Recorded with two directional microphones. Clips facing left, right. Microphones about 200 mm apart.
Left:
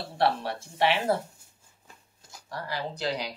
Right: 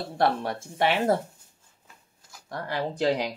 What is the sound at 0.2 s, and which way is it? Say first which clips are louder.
Speech: right 1 dB; 50° right (ahead or behind).